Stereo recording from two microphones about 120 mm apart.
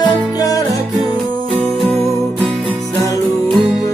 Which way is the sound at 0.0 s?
30° left (ahead or behind).